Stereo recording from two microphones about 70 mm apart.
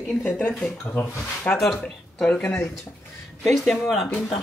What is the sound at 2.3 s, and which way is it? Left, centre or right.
Speech, left.